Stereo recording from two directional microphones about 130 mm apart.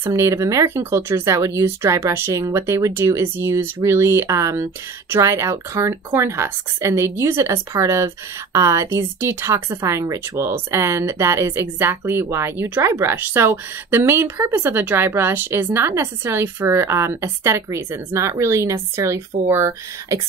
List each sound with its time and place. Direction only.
0.0 s a woman's voice: 20° right (ahead or behind)